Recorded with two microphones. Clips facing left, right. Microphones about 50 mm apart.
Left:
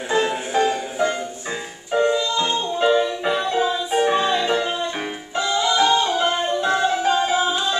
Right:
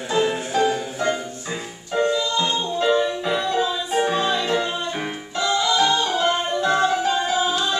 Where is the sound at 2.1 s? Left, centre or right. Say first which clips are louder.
Left 1 dB; centre.